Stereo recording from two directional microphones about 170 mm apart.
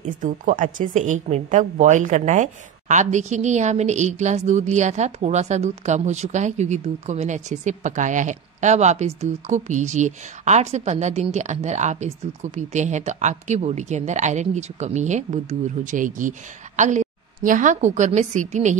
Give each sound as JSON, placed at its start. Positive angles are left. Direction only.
{"t": 0.2, "sound": "a woman's voice", "side_deg": -50}